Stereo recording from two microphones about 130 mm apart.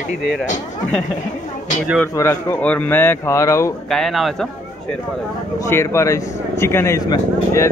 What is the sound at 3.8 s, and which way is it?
Speech, 5° left (ahead or behind).